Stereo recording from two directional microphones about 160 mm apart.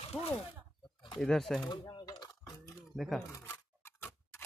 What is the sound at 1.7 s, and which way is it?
Coin, 25° left (ahead or behind).